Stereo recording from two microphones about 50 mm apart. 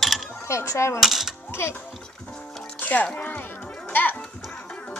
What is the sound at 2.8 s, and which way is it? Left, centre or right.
Music, left.